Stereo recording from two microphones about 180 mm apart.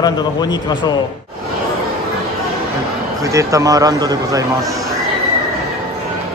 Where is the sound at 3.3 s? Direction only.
20° right (ahead or behind).